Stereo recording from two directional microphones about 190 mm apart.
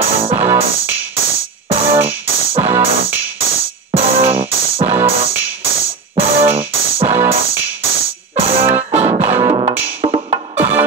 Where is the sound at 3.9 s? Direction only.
30° right (ahead or behind).